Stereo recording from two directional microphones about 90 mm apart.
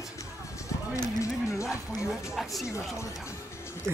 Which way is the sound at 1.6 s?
5° right (ahead or behind).